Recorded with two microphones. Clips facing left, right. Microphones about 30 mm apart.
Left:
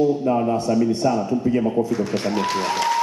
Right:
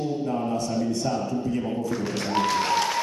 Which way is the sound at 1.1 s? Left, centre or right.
Left.